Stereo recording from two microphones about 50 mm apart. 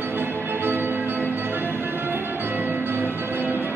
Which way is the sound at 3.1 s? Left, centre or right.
Right.